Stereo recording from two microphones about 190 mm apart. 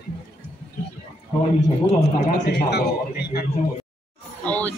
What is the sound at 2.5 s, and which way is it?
Speech, 60° left (ahead or behind).